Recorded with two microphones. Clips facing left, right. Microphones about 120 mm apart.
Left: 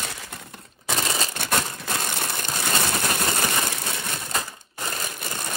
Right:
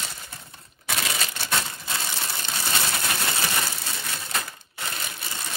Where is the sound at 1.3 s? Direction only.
55° left (ahead or behind).